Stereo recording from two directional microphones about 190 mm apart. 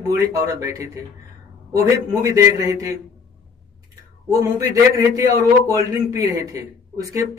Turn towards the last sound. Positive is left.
turn(degrees=-15)  # may be behind; listen again after turning